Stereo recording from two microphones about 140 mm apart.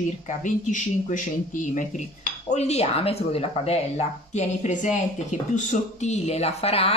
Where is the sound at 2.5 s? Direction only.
50° left (ahead or behind).